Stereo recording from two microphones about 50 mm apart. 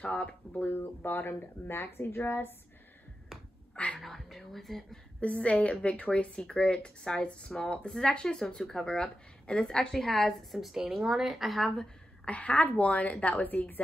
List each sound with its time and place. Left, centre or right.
0.0 s speech: left
0.6 s a woman's voice: left
3.7 s speech: left
4.0 s speech: centre
5.2 s a woman's voice: left
10.5 s speech: centre
12.3 s a woman's voice: left